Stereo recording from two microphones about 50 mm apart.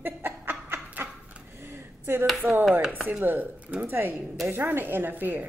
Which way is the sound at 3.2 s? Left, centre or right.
Right.